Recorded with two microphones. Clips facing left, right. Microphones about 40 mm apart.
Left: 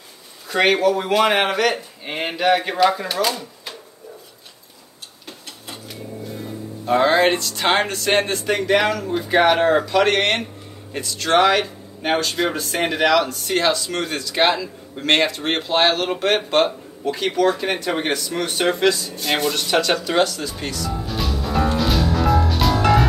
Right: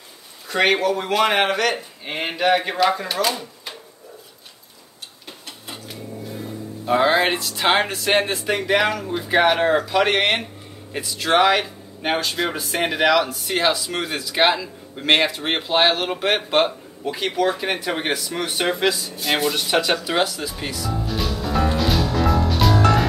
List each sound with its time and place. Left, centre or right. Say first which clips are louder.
0.5 s a man's voice: left 2 dB; centre
5.7 s speech: left 1 dB; centre